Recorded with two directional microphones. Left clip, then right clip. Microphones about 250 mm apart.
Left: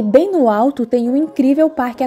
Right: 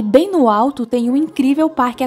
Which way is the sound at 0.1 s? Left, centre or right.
Centre.